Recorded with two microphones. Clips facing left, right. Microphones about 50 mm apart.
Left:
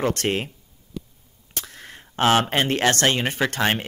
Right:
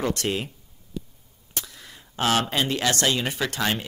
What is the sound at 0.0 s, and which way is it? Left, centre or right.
Speech, left.